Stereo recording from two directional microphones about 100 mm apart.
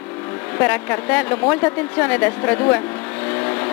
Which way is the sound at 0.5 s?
15° left (ahead or behind).